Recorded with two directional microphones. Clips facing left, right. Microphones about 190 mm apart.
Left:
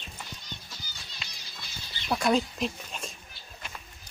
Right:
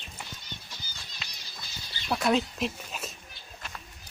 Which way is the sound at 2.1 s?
Centre (ahead or behind).